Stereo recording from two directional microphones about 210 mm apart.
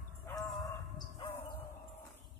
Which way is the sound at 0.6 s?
25° left (ahead or behind).